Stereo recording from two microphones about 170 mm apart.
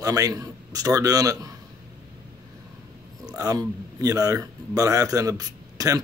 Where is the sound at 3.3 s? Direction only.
20° right (ahead or behind).